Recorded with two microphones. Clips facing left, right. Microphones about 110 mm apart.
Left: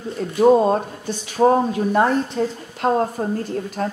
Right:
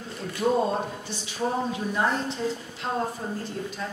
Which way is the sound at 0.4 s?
60° left (ahead or behind).